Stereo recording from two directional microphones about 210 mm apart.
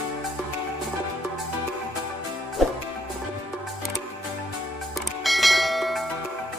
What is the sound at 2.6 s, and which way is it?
Music, centre (ahead or behind).